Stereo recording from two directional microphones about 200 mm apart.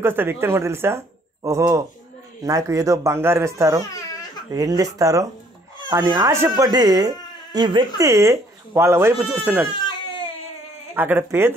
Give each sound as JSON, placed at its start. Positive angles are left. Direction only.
{"t": 0.0, "sound": "speech", "side_deg": -10}
{"t": 3.9, "sound": "a sound", "side_deg": 15}
{"t": 4.5, "sound": "speech", "side_deg": -15}
{"t": 9.7, "sound": "baby cry", "side_deg": 25}
{"t": 11.0, "sound": "speech", "side_deg": -10}